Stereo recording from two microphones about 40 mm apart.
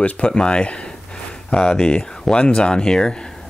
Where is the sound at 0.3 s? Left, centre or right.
Left.